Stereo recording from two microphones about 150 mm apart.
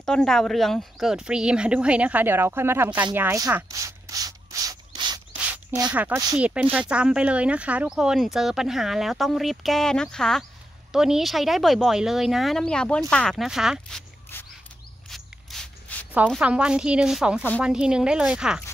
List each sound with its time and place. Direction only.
0.0 s a woman's voice: 5° left (ahead or behind); by 3.5 s 20° right (ahead or behind)
3.7 s rub: 20° right (ahead or behind)
6.1 s a woman's voice: 10° right (ahead or behind)
14.3 s a sound: 15° left (ahead or behind)
15.0 s a sound: centre (ahead or behind)
16.3 s a woman's voice: 5° right (ahead or behind)